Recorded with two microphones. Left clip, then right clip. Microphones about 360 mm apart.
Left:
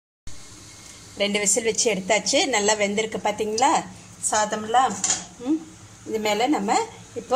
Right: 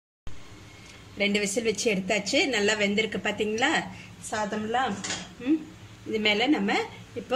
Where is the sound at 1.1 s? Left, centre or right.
Centre.